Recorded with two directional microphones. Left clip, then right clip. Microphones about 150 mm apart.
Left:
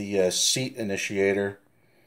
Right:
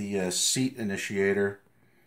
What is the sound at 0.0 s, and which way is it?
Speech, 30° left (ahead or behind).